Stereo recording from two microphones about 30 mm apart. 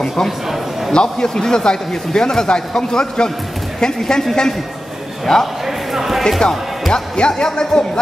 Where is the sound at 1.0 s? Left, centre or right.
Centre.